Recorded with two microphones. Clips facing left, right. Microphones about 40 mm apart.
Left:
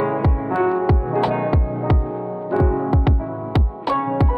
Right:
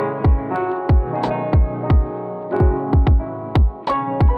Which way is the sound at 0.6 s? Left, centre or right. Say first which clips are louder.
Left 4 dB; centre.